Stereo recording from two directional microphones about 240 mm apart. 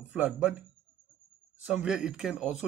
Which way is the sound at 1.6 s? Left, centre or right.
Centre.